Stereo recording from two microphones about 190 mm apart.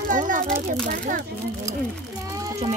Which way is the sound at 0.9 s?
45° right (ahead or behind).